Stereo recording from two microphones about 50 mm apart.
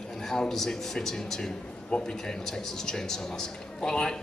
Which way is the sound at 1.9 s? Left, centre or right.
Left.